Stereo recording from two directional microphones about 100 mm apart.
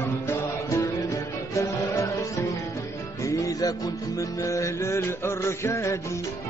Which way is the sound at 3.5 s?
40° left (ahead or behind).